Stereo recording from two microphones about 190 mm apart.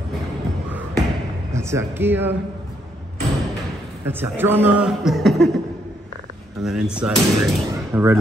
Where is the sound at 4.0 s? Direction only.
10° right (ahead or behind).